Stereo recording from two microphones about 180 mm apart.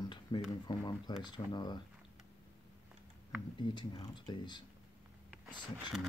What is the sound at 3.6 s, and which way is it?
Speech, 25° left (ahead or behind).